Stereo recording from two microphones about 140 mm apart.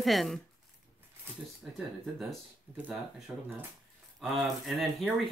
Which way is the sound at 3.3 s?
5° right (ahead or behind).